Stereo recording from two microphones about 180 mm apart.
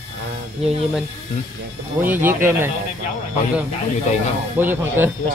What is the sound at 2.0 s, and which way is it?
Speech, 10° right (ahead or behind).